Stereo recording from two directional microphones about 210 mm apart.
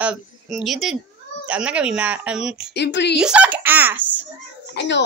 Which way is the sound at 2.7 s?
55° left (ahead or behind).